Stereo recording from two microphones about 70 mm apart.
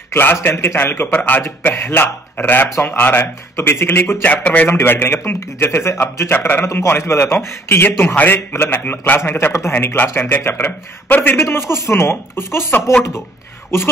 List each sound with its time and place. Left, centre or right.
0.1 s a man's voice: left
4.7 s a man's voice: left